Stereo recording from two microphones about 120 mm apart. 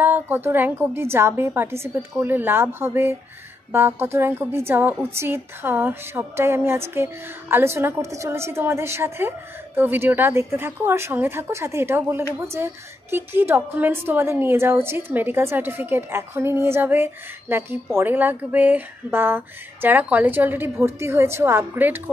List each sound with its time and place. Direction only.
0.0 s a woman's voice: 15° right (ahead or behind)